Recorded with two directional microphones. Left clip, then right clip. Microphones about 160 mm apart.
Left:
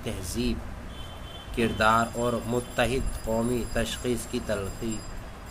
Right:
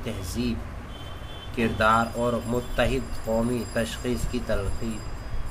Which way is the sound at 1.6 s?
15° left (ahead or behind).